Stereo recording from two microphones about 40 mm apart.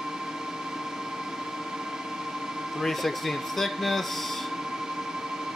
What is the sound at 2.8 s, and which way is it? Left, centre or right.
Speech, centre.